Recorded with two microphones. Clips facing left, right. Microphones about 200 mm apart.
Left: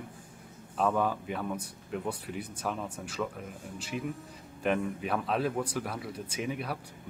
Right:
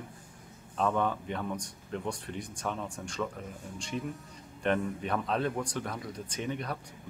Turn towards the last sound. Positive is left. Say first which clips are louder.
# left 1 dB
turn(degrees=5)  # may be behind; listen again after turning